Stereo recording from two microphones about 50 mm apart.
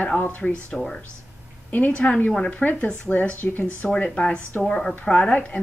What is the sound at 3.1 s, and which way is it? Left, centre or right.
Speech, centre.